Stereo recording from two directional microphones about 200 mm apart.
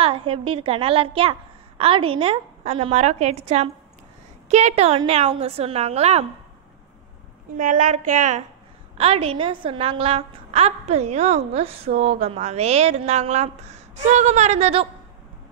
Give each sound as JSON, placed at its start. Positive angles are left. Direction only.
{"t": 0.0, "sound": "a woman's voice", "side_deg": -30}
{"t": 7.6, "sound": "a woman's voice", "side_deg": -40}